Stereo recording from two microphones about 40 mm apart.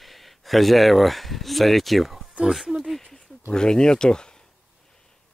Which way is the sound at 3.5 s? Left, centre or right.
Centre.